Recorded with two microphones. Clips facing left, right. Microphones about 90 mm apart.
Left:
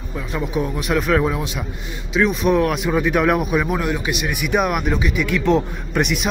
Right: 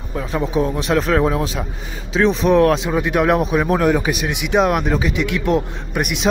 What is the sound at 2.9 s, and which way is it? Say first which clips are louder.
Speech: right 1 dB; 15° right (ahead or behind).